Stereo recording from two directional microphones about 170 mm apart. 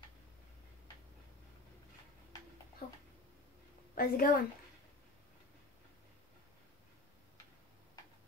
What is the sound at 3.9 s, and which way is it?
Speech, 60° left (ahead or behind).